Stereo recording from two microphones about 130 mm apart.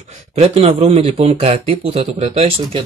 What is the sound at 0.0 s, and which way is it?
Speech, 60° right (ahead or behind).